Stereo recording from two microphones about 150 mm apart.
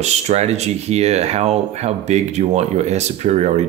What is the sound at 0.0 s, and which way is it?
Speech, 45° right (ahead or behind).